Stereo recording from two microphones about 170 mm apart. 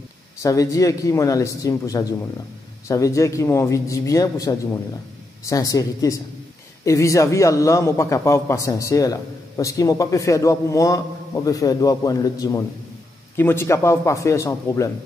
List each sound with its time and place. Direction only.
0.4 s a man's voice: 20° left (ahead or behind)